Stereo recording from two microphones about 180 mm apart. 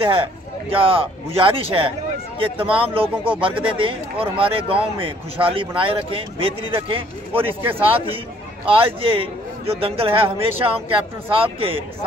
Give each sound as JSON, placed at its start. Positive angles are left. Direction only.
{"t": 0.0, "sound": "speech", "side_deg": -30}